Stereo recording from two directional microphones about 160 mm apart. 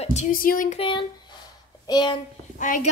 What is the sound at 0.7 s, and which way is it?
A woman's voice, 35° left (ahead or behind).